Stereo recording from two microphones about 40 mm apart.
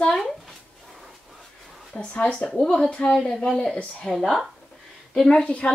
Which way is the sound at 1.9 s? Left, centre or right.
Left.